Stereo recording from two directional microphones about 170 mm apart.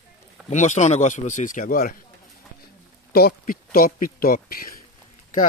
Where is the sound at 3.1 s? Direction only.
65° left (ahead or behind).